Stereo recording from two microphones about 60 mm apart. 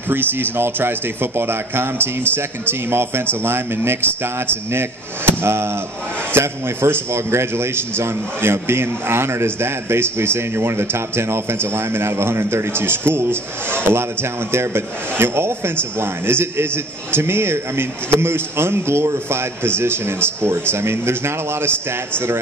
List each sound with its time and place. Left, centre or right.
0.1 s a man's voice: right